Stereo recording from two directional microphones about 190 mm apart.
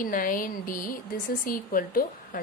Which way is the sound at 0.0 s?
45° left (ahead or behind).